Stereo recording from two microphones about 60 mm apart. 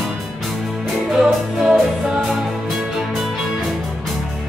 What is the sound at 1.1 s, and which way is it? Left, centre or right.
Music, centre.